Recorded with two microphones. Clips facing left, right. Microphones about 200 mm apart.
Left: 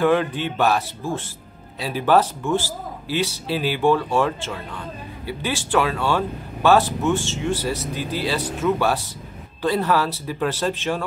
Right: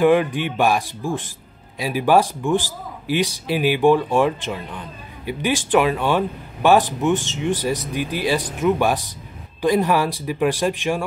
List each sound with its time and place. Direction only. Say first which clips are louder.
0.0 s a man's voice: right 3 dB; 15° right (ahead or behind)